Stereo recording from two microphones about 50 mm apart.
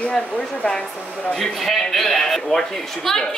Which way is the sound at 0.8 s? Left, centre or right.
Centre.